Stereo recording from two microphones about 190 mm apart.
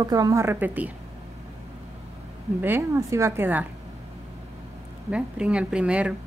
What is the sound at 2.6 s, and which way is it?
A woman's voice, 10° right (ahead or behind).